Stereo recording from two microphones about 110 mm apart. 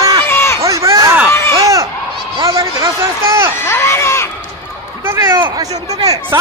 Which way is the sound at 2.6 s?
25° right (ahead or behind).